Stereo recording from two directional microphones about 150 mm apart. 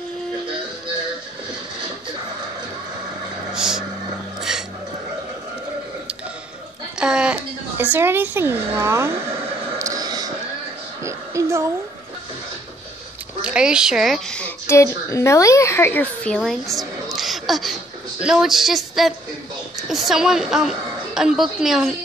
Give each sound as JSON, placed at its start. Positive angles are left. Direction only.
{"t": 3.5, "sound": "vehicle", "side_deg": -5}
{"t": 4.4, "sound": "music", "side_deg": -5}
{"t": 7.0, "sound": "music", "side_deg": -5}
{"t": 7.7, "sound": "a woman's voice", "side_deg": -15}
{"t": 9.8, "sound": "a sound", "side_deg": -25}
{"t": 13.4, "sound": "a woman's voice", "side_deg": -5}
{"t": 14.7, "sound": "a woman's voice", "side_deg": 20}